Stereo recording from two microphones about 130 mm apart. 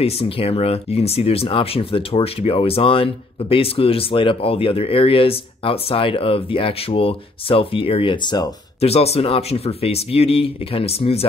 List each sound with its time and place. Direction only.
0.0 s speech: 50° left (ahead or behind)
8.8 s speech: 50° left (ahead or behind)